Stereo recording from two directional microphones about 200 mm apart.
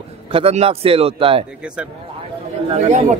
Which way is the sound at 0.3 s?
30° right (ahead or behind).